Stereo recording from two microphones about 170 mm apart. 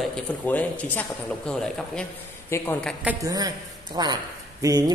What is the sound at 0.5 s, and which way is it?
Speech, 10° left (ahead or behind).